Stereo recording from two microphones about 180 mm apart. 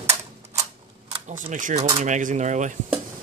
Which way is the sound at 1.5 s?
40° right (ahead or behind).